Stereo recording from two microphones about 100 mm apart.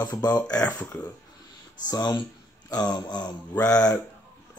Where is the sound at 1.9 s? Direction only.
45° left (ahead or behind).